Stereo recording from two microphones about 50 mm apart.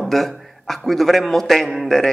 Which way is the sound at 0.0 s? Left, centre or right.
Centre.